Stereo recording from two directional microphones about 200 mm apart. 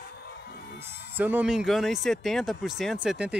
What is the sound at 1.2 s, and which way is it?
Speech, 5° right (ahead or behind).